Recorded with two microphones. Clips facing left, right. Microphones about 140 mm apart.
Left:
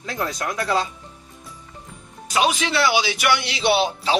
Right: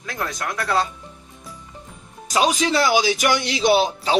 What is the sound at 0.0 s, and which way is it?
Speech, 25° left (ahead or behind).